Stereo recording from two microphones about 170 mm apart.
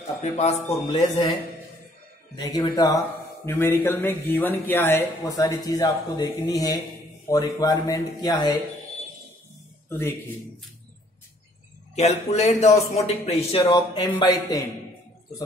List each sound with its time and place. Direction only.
0.2 s a man's voice: 40° left (ahead or behind)
2.3 s a man's voice: 25° left (ahead or behind)
3.4 s a man's voice: 15° left (ahead or behind)
9.8 s a man's voice: 15° left (ahead or behind)
11.9 s a man's voice: 40° left (ahead or behind); by 14.6 s 25° left (ahead or behind)